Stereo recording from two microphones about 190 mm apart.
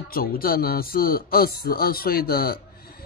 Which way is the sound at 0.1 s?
50° left (ahead or behind).